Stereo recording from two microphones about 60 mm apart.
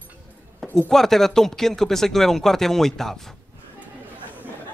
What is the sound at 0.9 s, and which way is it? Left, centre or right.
Speech, centre.